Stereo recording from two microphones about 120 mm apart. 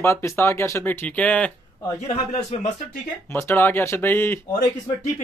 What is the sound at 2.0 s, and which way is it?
Speech, 65° left (ahead or behind).